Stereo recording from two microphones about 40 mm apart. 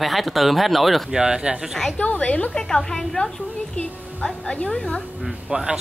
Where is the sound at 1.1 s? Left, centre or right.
Centre.